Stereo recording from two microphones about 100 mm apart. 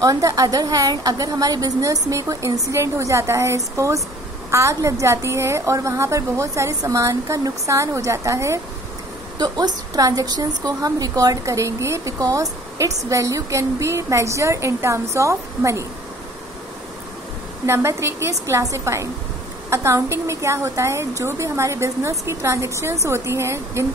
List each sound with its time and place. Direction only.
0.0 s a woman's voice: 35° right (ahead or behind)
9.4 s a woman's voice: 40° right (ahead or behind)
17.6 s a woman's voice: 25° right (ahead or behind)